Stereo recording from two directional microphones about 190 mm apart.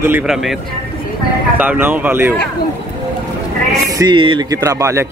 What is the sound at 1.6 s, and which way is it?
Speech, 10° right (ahead or behind).